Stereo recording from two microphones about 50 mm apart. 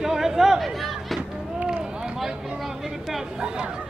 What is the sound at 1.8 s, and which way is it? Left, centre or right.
Run, centre.